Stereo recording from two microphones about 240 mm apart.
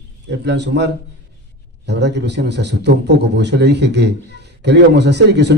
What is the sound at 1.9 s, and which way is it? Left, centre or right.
A man's voice, right.